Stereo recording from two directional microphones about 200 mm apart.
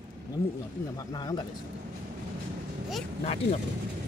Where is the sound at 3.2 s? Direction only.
30° left (ahead or behind).